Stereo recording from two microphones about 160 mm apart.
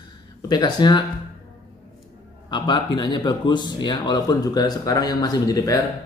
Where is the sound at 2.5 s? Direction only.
30° left (ahead or behind).